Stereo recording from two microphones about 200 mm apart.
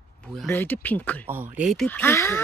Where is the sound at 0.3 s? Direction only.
5° left (ahead or behind).